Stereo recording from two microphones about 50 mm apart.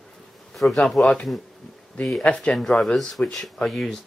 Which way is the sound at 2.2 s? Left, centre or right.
Left.